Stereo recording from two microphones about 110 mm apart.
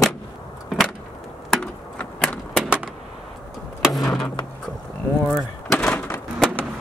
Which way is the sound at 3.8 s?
Centre (ahead or behind).